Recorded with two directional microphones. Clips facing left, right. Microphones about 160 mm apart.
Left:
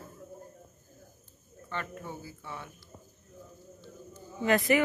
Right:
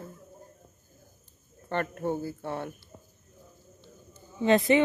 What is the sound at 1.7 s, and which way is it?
Speech, 60° right (ahead or behind).